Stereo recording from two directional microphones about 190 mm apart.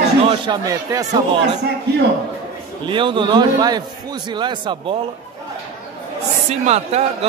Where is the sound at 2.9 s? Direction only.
25° right (ahead or behind).